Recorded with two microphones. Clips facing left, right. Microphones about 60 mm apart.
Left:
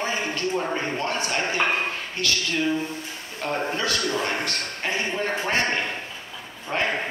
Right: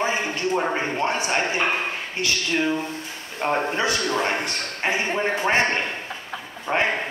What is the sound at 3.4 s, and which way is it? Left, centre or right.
A man's voice, right.